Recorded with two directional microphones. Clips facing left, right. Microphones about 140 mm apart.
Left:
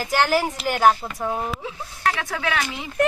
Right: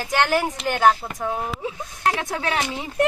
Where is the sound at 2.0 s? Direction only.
20° right (ahead or behind).